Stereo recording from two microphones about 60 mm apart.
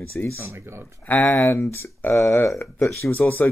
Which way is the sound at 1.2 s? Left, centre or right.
Centre.